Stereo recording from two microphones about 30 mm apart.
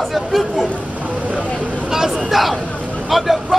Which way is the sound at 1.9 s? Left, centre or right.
Centre.